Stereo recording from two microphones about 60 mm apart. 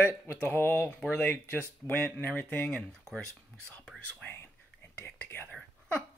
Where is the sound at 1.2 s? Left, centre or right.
Left.